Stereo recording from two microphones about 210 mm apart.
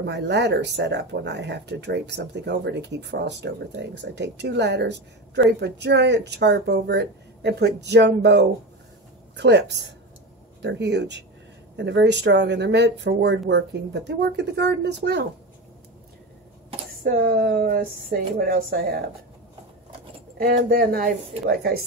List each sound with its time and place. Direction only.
0.0 s speech: 55° right (ahead or behind)
17.0 s speech: 40° right (ahead or behind)
20.3 s speech: 45° right (ahead or behind)